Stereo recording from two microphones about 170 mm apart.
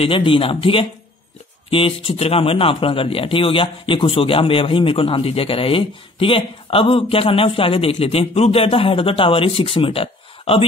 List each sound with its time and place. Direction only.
0.0 s a man's voice: 30° left (ahead or behind)